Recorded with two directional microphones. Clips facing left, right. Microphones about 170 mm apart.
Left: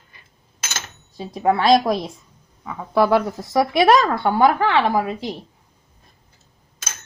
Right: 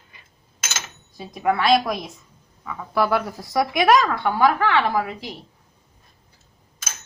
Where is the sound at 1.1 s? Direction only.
30° left (ahead or behind).